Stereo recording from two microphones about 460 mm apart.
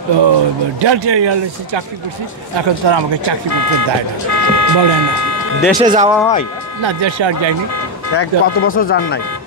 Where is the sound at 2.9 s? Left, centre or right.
Right.